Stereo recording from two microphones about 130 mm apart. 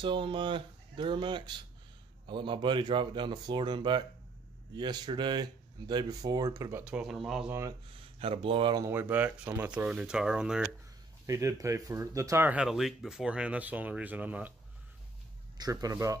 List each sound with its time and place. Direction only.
0.0 s speech: 40° right (ahead or behind); by 6.8 s 25° right (ahead or behind)
6.8 s speech: 5° right (ahead or behind)
7.4 s speech: 20° right (ahead or behind)
8.2 s speech: 45° right (ahead or behind)
8.8 s speech: 15° right (ahead or behind)
11.2 s speech: 25° right (ahead or behind)
12.4 s speech: 5° right (ahead or behind)
15.5 s speech: 30° right (ahead or behind)